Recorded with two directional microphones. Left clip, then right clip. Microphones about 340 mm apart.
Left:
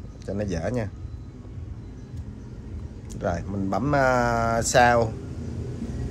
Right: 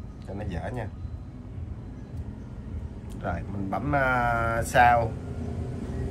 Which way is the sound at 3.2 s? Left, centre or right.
Centre.